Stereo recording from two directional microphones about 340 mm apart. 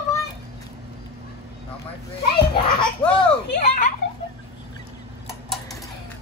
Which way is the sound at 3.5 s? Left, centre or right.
Left.